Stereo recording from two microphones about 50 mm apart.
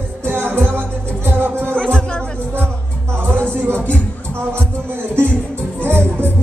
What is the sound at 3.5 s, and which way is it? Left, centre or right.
Music, right.